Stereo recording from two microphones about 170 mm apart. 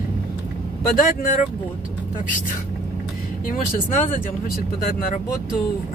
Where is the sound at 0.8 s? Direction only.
55° left (ahead or behind).